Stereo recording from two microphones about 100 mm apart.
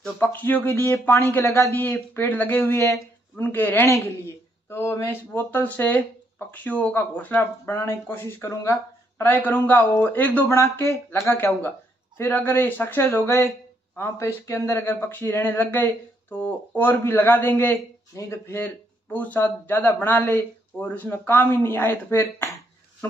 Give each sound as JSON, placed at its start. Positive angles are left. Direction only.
{"t": 0.0, "sound": "speech", "side_deg": 15}
{"t": 2.6, "sound": "speech", "side_deg": 30}
{"t": 10.5, "sound": "speech", "side_deg": 30}